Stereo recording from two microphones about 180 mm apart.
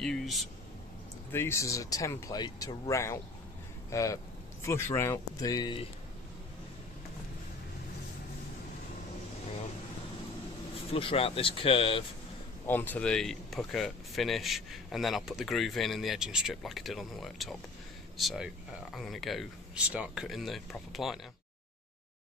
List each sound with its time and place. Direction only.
0.0 s speech: centre (ahead or behind)
1.3 s speech: 15° left (ahead or behind)
10.9 s speech: 30° left (ahead or behind)
12.6 s speech: 10° left (ahead or behind)